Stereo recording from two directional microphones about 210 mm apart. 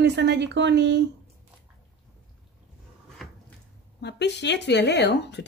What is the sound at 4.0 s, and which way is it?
Speech, 55° left (ahead or behind).